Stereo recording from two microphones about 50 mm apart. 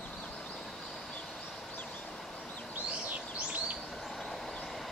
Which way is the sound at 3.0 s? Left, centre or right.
Right.